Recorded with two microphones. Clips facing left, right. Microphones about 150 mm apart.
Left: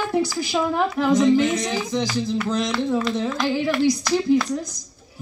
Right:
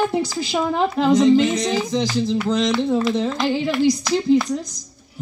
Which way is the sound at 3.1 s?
20° right (ahead or behind).